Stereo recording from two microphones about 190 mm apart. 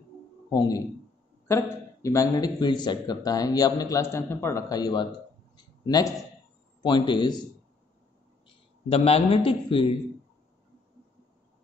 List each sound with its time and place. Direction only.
0.5 s a man's voice: 20° left (ahead or behind)
8.8 s a man's voice: 30° left (ahead or behind)